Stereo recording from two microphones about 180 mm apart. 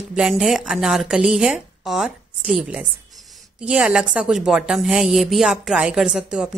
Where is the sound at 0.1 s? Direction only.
5° right (ahead or behind).